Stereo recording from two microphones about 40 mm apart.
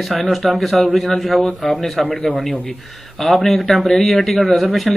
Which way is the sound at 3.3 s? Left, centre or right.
Centre.